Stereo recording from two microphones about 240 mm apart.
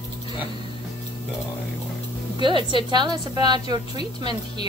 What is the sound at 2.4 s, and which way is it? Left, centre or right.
A woman's voice, centre.